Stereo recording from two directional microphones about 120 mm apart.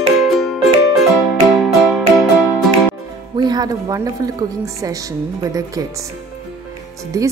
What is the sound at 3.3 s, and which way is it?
Music, 35° right (ahead or behind).